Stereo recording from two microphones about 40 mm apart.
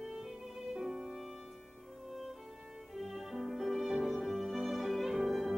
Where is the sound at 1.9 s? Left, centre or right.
Centre.